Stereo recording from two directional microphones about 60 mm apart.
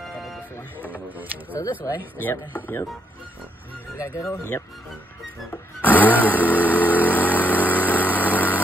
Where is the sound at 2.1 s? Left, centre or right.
Left.